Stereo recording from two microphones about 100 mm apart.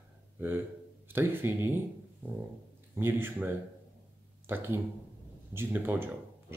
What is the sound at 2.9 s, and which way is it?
Speech, 25° right (ahead or behind).